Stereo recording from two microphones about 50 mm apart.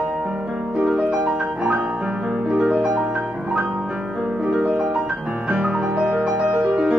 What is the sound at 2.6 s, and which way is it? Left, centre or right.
Music, centre.